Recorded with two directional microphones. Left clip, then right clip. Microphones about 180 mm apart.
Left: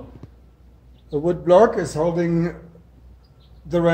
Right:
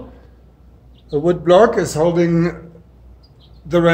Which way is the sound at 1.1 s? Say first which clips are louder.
Right 3 dB; 20° left (ahead or behind).